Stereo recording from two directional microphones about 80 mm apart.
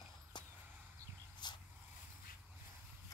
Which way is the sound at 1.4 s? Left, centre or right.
Left.